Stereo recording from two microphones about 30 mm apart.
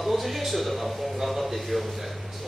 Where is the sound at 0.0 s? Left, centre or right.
Centre.